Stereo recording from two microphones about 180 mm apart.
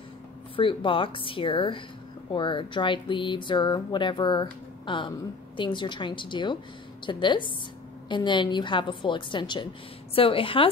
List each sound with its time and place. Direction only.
0.6 s a woman's voice: 30° left (ahead or behind)